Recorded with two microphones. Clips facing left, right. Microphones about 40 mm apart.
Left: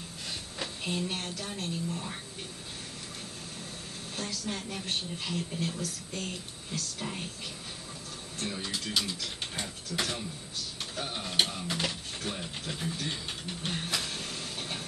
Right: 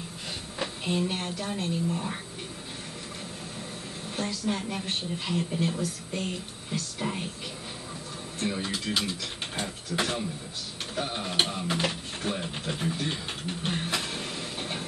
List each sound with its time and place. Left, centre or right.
0.6 s speech: centre
4.2 s a woman's voice: centre
8.4 s speech: right
11.0 s a sound: centre